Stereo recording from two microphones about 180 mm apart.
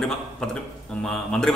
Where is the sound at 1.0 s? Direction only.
5° left (ahead or behind).